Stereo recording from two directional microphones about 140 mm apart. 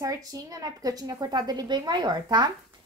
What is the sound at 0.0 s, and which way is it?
A woman's voice, 25° right (ahead or behind).